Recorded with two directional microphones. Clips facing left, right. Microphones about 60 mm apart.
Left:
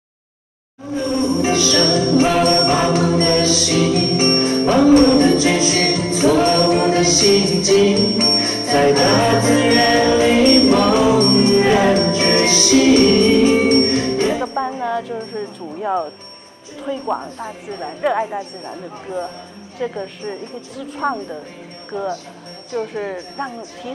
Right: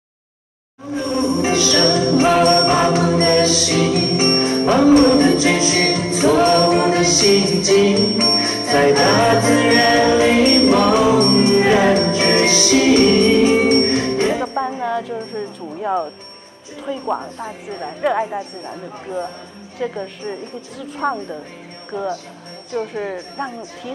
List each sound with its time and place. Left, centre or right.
1.4 s music: right
3.6 s jingle bell: right
5.6 s music: right
6.4 s music: right
13.2 s music: right
14.4 s speech: centre